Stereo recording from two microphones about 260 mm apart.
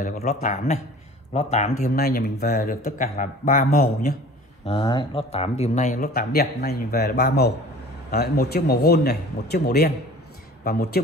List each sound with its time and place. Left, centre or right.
0.0 s speech: left
1.8 s speech: left
4.6 s speech: centre; by 11.0 s left